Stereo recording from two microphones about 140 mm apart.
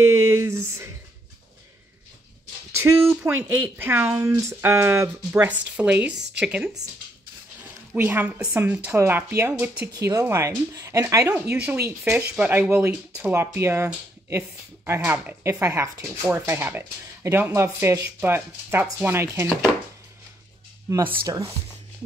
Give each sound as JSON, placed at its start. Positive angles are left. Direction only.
{"t": 0.0, "sound": "a sound", "side_deg": -20}
{"t": 2.7, "sound": "speech", "side_deg": -15}
{"t": 7.9, "sound": "speech", "side_deg": -15}
{"t": 9.5, "sound": "speech", "side_deg": -10}
{"t": 10.0, "sound": "speech", "side_deg": -20}
{"t": 15.4, "sound": "speech", "side_deg": -20}